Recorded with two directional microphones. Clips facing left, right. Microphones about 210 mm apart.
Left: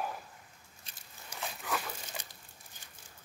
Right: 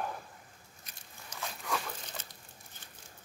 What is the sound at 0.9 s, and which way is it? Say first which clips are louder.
Biting: right 1 dB; 30° left (ahead or behind).